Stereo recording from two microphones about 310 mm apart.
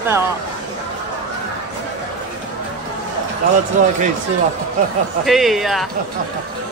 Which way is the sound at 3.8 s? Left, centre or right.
Right.